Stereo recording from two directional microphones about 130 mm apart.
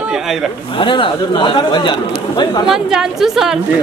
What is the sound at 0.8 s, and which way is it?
Speech, 40° left (ahead or behind).